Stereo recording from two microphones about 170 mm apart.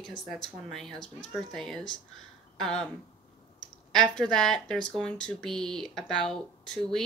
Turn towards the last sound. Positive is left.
turn(degrees=5)  # may be behind; listen again after turning